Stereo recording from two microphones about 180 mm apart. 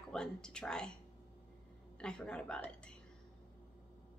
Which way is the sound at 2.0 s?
5° left (ahead or behind).